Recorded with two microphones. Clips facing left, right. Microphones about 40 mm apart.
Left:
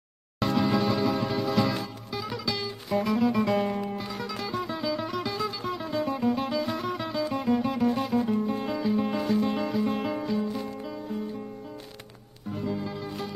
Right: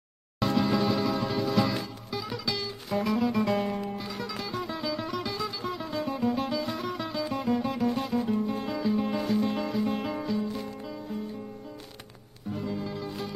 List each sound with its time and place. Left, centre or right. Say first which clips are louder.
0.4 s music: left 1 dB; centre
8.1 s music: left 2 dB; centre
8.5 s music: left 1 dB; centre
12.5 s music: left 2 dB; centre